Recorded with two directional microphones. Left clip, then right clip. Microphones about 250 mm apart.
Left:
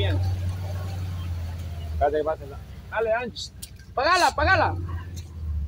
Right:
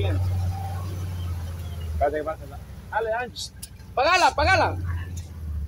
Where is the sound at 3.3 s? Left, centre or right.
Centre.